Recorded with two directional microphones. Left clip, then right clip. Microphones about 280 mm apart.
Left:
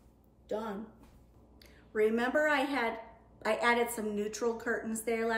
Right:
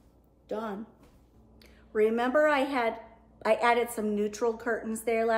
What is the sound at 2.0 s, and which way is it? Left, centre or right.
A woman's voice, centre.